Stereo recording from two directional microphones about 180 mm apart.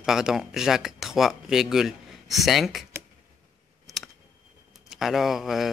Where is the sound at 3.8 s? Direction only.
Centre (ahead or behind).